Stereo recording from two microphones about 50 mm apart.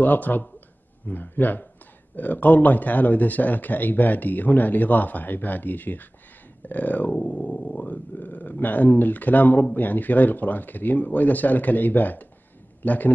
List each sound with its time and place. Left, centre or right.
0.0 s speech: left
7.8 s speech: left